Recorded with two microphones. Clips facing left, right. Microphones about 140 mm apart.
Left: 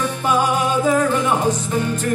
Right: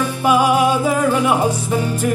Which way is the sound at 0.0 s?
10° right (ahead or behind).